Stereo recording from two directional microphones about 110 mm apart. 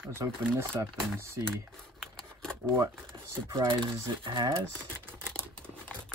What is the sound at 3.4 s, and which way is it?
Speech, 45° right (ahead or behind).